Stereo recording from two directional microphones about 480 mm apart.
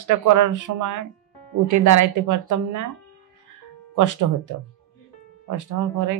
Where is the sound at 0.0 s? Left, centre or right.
Right.